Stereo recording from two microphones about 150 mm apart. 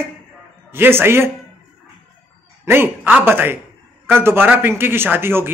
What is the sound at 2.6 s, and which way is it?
Speech, 15° right (ahead or behind).